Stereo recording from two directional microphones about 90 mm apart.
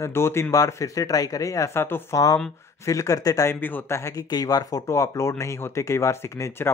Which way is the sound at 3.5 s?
20° left (ahead or behind).